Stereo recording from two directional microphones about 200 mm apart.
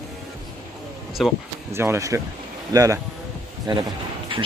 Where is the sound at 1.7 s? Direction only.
15° right (ahead or behind).